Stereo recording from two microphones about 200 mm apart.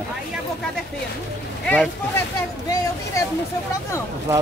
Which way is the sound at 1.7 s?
10° left (ahead or behind).